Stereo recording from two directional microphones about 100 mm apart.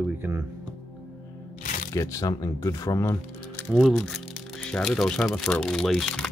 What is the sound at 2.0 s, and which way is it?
Speech, 35° left (ahead or behind).